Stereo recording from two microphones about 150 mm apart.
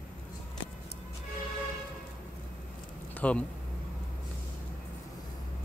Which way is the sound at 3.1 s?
10° left (ahead or behind).